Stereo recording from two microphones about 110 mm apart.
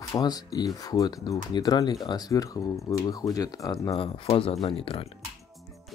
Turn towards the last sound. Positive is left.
turn(degrees=60)  # may be behind; listen again after turning